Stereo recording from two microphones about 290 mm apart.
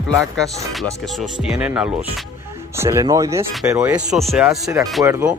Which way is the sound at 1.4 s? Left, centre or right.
Centre.